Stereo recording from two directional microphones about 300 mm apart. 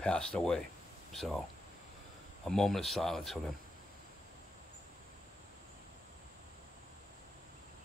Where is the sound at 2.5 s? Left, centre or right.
Centre.